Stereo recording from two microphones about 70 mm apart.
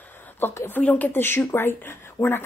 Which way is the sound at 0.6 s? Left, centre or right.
Left.